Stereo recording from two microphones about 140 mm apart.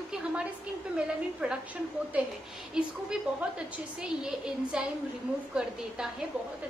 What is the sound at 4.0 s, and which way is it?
A woman's voice, 5° right (ahead or behind).